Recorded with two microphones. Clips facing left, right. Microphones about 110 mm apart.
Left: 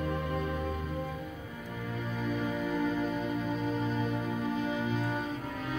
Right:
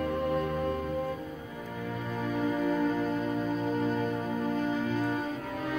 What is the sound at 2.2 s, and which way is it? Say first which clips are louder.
Music: right 4 dB; 50° right (ahead or behind).